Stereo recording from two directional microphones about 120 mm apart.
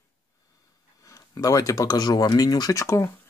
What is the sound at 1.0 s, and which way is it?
Speech, 30° left (ahead or behind).